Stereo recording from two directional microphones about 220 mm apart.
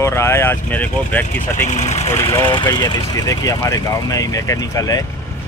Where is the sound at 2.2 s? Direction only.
10° left (ahead or behind).